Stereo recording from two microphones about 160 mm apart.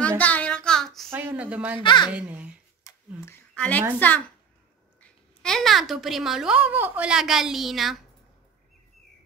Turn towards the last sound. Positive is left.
turn(degrees=0)  # may be behind; listen again after turning